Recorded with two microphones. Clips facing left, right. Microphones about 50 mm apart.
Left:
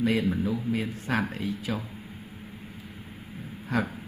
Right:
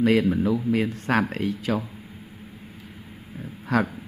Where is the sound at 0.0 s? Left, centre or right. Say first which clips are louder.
Right 5 dB; right.